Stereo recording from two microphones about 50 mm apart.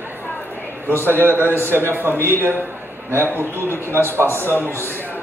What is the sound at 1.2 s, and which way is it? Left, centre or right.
A man's voice, right.